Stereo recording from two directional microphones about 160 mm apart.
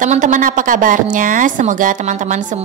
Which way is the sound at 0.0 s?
50° right (ahead or behind).